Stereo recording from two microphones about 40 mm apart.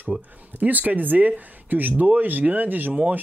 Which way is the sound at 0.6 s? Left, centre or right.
Right.